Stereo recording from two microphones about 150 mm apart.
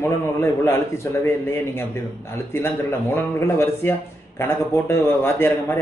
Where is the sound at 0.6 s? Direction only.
15° left (ahead or behind).